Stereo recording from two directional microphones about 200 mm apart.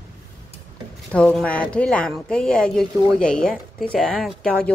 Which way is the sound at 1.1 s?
5° left (ahead or behind).